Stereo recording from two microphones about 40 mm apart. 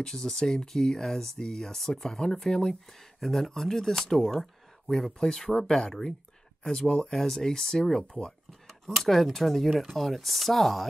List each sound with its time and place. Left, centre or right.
0.0 s speech: centre
6.9 s speech: left
8.2 s a sound: centre
9.0 s speech: centre